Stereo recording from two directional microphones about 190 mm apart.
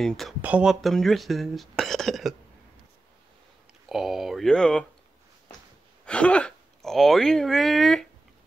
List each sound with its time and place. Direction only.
0.4 s speech: 5° right (ahead or behind)
3.9 s speech: centre (ahead or behind)
6.0 s speech: 5° left (ahead or behind)